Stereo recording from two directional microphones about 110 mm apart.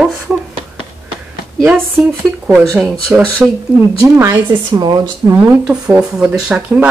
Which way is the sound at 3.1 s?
15° right (ahead or behind).